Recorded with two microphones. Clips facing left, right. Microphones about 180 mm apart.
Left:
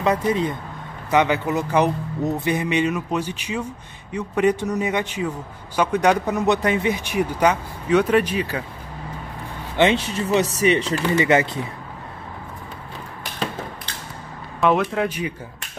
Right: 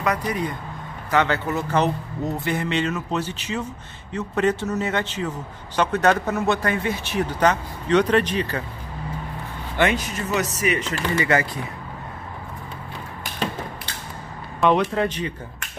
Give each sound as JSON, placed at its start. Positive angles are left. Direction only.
{"t": 0.0, "sound": "speech", "side_deg": 25}
{"t": 9.8, "sound": "speech", "side_deg": 25}
{"t": 11.1, "sound": "speech", "side_deg": 20}
{"t": 14.6, "sound": "speech", "side_deg": 0}